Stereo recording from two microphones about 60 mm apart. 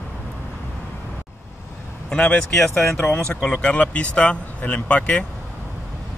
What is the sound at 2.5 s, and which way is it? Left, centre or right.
Speech, centre.